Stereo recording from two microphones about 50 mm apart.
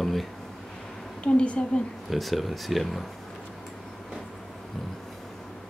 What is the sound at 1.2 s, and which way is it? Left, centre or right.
Speech, left.